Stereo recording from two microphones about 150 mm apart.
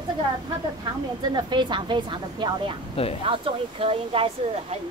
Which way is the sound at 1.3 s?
30° right (ahead or behind).